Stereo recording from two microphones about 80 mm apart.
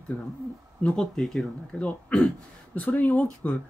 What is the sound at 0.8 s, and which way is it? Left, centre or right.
Speech, centre.